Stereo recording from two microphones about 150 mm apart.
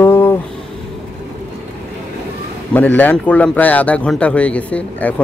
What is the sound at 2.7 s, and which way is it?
Speech, 10° left (ahead or behind).